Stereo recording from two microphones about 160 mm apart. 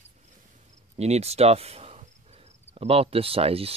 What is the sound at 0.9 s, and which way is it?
Cricket, 45° right (ahead or behind).